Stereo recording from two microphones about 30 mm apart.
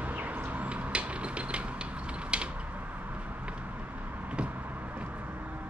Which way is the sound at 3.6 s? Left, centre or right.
Right.